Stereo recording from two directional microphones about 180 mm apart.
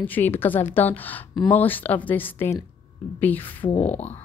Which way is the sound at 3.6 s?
35° left (ahead or behind).